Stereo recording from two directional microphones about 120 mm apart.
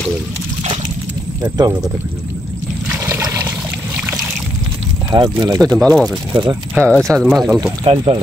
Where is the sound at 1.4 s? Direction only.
30° right (ahead or behind).